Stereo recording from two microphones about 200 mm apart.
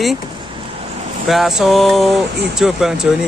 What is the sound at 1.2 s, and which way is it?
Speech, centre (ahead or behind).